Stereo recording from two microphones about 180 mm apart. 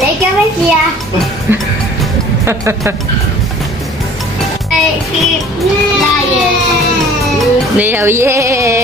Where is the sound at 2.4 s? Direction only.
15° right (ahead or behind).